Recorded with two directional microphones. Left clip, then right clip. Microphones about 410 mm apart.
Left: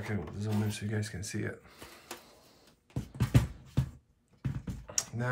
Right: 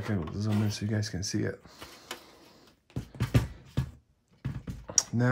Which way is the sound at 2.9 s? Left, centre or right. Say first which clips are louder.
Right 1 dB; centre.